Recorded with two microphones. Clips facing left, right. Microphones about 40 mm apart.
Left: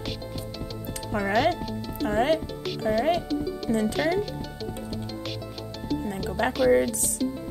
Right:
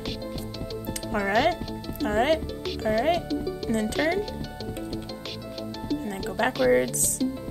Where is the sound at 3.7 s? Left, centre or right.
Right.